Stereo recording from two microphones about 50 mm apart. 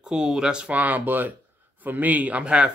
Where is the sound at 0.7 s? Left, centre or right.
Right.